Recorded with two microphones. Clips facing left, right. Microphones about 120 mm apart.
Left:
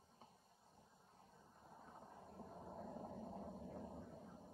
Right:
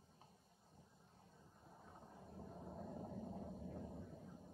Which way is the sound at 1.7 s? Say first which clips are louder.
Left 1 dB; 5° left (ahead or behind).